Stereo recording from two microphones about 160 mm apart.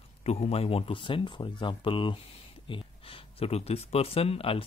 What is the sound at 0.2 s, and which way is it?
Speech, 40° left (ahead or behind).